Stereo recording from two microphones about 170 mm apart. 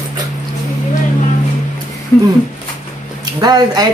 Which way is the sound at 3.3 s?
25° right (ahead or behind).